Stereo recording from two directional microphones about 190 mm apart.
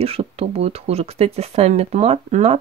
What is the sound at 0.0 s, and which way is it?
Speech, 30° right (ahead or behind).